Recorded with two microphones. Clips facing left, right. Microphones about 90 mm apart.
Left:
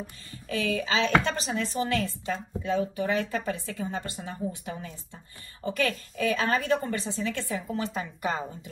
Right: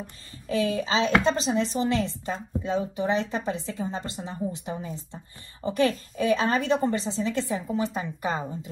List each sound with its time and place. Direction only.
0.5 s speech: 30° right (ahead or behind)
7.6 s speech: 20° right (ahead or behind)